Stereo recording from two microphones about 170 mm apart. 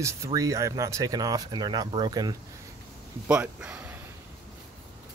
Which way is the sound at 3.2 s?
5° right (ahead or behind).